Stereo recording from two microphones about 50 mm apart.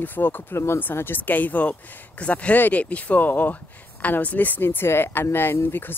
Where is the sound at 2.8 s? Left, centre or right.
Left.